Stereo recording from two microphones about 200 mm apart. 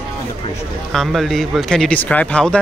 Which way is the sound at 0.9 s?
Centre (ahead or behind).